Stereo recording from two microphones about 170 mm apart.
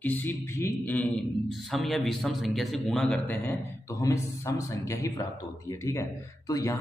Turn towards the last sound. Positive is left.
turn(degrees=20)  # may be behind; listen again after turning